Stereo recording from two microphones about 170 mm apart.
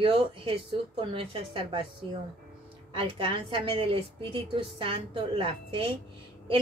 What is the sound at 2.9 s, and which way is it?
Speech, 30° right (ahead or behind).